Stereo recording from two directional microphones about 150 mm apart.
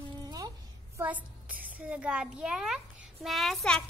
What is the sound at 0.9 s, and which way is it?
A child's voice, 10° right (ahead or behind).